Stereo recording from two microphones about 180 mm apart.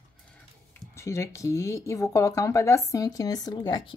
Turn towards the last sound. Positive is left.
turn(degrees=25)  # may be behind; listen again after turning